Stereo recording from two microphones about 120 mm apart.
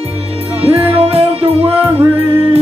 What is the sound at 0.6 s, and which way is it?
Music, 55° right (ahead or behind).